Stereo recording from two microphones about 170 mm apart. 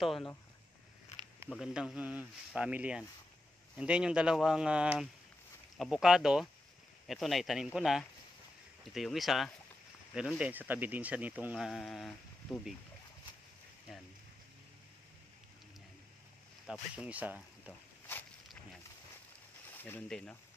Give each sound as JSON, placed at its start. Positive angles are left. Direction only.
{"t": 0.0, "sound": "speech", "side_deg": 0}
{"t": 1.6, "sound": "speech", "side_deg": -5}
{"t": 16.6, "sound": "speech", "side_deg": -5}
{"t": 19.7, "sound": "speech", "side_deg": 10}